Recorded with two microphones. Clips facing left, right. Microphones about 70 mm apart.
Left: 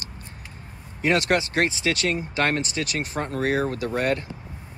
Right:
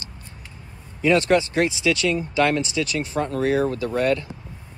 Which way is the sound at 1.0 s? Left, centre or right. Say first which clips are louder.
Right 4 dB; left.